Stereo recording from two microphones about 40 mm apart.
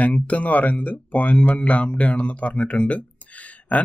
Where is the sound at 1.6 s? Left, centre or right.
Left.